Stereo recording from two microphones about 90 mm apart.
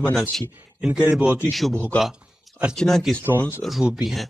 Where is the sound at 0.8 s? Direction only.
10° right (ahead or behind).